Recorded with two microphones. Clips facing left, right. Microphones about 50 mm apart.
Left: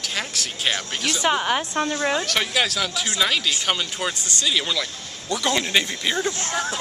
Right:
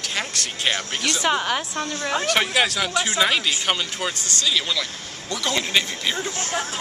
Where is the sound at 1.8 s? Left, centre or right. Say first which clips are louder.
Left 3 dB; left.